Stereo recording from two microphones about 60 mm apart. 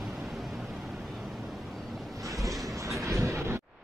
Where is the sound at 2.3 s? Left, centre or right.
Right.